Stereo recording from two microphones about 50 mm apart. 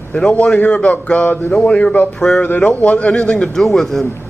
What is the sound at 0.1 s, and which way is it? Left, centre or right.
A man's voice, left.